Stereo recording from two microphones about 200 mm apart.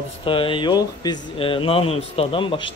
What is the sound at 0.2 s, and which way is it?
Speech, 25° left (ahead or behind).